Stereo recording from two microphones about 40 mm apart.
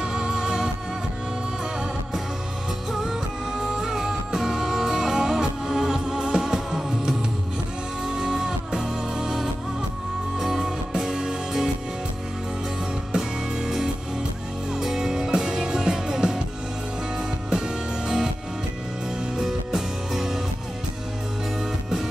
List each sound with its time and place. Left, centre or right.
0.0 s music: centre
2.9 s music: centre
8.2 s music: centre
13.1 s music: centre
17.5 s music: centre
19.3 s music: centre